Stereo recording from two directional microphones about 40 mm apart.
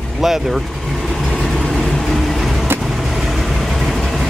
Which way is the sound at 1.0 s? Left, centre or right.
Centre.